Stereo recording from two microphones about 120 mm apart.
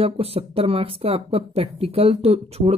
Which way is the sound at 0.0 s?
55° right (ahead or behind).